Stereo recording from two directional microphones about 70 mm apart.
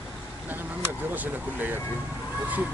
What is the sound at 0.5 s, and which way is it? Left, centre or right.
Speech, right.